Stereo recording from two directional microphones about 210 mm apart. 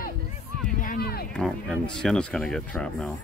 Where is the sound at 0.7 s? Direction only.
45° left (ahead or behind).